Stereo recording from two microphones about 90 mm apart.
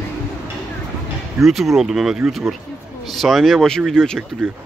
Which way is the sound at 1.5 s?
5° right (ahead or behind).